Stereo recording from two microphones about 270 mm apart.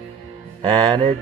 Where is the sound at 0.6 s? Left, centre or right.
Centre.